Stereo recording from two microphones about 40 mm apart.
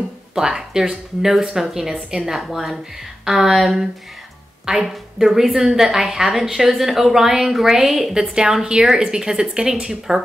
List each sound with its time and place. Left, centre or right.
0.3 s a woman's voice: centre
2.3 s a woman's voice: centre
4.8 s a woman's voice: centre